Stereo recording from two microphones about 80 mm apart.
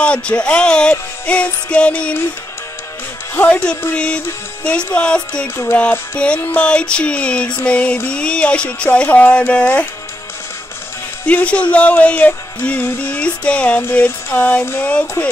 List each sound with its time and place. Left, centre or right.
0.0 s music: centre
3.3 s music: centre
11.2 s music: centre